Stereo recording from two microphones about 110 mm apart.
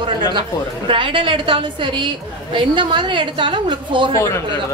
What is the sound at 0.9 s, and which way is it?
A woman's voice, 50° right (ahead or behind).